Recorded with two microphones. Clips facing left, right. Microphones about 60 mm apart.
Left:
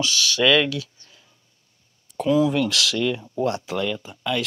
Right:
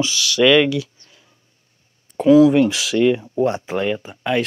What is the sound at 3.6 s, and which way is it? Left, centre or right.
Speech, right.